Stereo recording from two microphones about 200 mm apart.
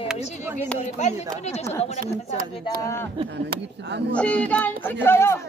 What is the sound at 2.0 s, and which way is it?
Speech, 45° right (ahead or behind).